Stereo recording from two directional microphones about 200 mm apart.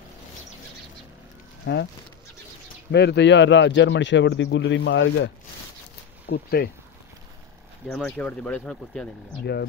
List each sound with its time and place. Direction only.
1.7 s a man's voice: 60° left (ahead or behind)
2.9 s a man's voice: 55° left (ahead or behind)
6.3 s speech: 50° left (ahead or behind)
7.9 s speech: 5° left (ahead or behind)